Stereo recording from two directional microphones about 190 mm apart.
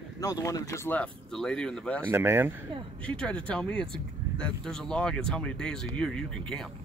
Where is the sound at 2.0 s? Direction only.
10° right (ahead or behind).